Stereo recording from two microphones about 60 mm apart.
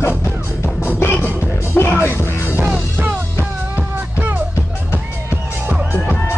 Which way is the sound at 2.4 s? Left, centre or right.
Right.